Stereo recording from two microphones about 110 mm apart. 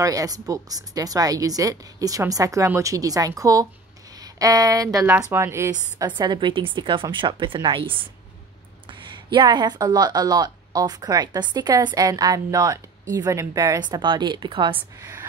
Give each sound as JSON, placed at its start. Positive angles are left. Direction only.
{"t": 0.0, "sound": "speech", "side_deg": -35}
{"t": 5.0, "sound": "speech", "side_deg": -20}
{"t": 5.7, "sound": "a woman's voice", "side_deg": -40}